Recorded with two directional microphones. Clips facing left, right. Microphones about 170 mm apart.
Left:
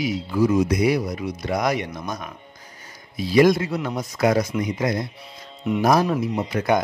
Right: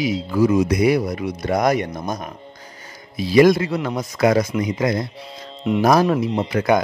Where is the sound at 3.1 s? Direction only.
90° right.